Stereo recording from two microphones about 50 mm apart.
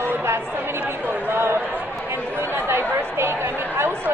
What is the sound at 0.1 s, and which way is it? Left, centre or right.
Chatter, right.